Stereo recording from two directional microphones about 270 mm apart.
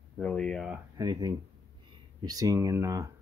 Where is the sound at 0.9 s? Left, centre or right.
Centre.